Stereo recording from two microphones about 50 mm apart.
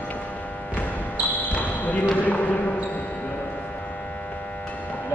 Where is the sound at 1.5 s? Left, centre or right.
Left.